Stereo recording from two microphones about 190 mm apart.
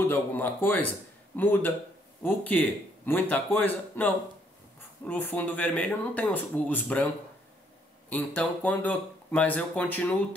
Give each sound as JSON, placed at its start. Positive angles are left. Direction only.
{"t": 0.0, "sound": "speech", "side_deg": 10}
{"t": 8.1, "sound": "speech", "side_deg": 10}